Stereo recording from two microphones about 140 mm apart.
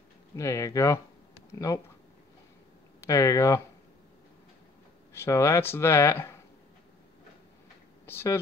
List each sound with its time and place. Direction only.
0.4 s speech: 20° left (ahead or behind)
3.1 s speech: 20° left (ahead or behind)
5.1 s speech: 20° left (ahead or behind)
8.1 s speech: 15° left (ahead or behind)